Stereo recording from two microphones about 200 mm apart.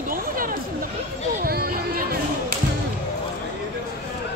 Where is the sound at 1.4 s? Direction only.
50° right (ahead or behind).